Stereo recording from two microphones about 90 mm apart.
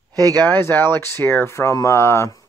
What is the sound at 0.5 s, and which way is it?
Speech, 25° left (ahead or behind).